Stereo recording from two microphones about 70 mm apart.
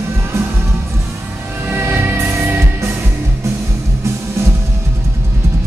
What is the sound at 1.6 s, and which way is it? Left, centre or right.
Music, right.